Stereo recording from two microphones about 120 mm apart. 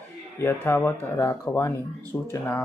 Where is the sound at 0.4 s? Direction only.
20° left (ahead or behind).